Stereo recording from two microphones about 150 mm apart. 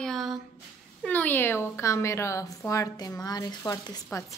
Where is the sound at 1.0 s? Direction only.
10° left (ahead or behind).